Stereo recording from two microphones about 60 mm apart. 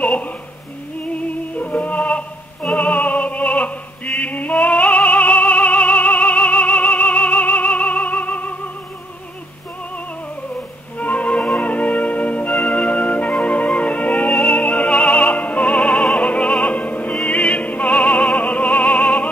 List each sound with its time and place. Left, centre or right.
0.0 s a sound: left
1.0 s music: left
3.4 s opera: centre
11.0 s music: left
16.2 s opera: centre